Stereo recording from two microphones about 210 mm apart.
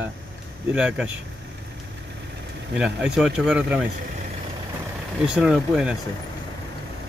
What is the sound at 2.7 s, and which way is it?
Speech, 5° right (ahead or behind).